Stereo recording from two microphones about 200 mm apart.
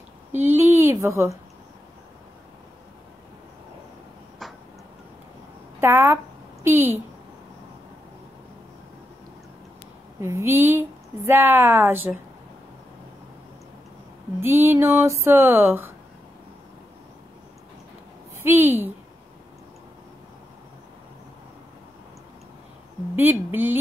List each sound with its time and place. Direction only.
0.3 s speech: 10° right (ahead or behind)
4.4 s a sound: centre (ahead or behind)
5.8 s a woman's voice: 10° right (ahead or behind)
10.2 s a woman's voice: 15° right (ahead or behind)
14.4 s a woman's voice: 10° right (ahead or behind)
18.4 s a woman's voice: 10° right (ahead or behind)
23.1 s a woman's voice: 10° right (ahead or behind)